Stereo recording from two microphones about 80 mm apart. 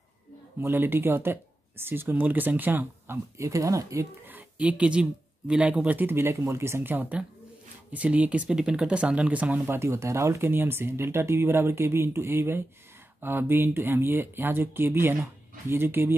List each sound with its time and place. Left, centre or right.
0.6 s speech: right
3.3 s speech: right
4.3 s a sound: centre
5.5 s speech: centre
9.7 s speech: right